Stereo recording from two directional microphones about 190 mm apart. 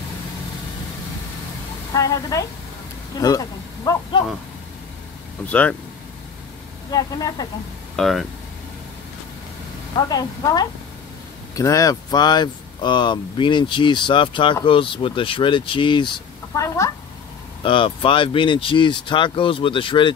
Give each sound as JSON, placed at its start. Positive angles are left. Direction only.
{"t": 2.0, "sound": "speech", "side_deg": 15}
{"t": 5.5, "sound": "speech", "side_deg": 10}
{"t": 6.9, "sound": "speech", "side_deg": 20}
{"t": 7.9, "sound": "speech", "side_deg": 0}
{"t": 9.9, "sound": "speech", "side_deg": 20}
{"t": 16.6, "sound": "speech", "side_deg": 15}
{"t": 17.6, "sound": "speech", "side_deg": 25}